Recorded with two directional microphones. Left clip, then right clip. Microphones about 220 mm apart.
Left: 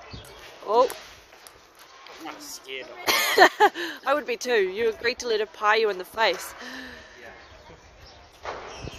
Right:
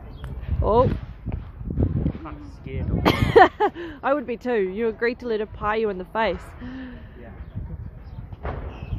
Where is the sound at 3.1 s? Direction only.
10° left (ahead or behind).